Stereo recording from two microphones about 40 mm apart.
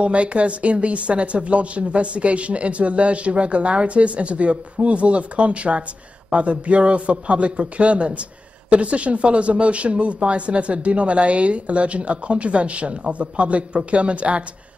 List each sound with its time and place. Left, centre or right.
0.0 s a woman's voice: right